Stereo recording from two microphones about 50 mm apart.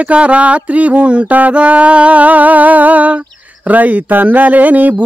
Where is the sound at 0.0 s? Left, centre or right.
Right.